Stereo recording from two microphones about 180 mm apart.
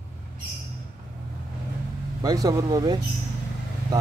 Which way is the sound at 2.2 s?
20° right (ahead or behind).